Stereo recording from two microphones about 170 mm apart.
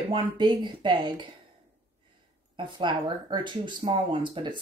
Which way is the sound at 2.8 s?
25° right (ahead or behind).